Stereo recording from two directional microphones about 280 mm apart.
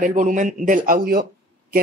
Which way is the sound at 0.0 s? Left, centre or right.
Right.